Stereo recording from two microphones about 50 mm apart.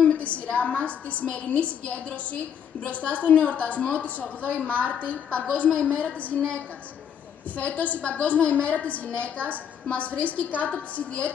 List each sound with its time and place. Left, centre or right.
0.0 s a woman's voice: left
7.5 s a woman's voice: left